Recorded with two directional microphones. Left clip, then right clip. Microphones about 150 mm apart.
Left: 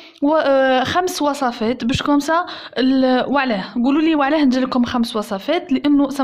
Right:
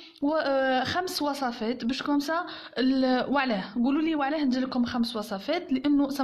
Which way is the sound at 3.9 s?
30° left (ahead or behind).